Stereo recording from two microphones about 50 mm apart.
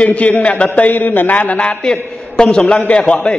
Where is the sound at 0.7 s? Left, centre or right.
Left.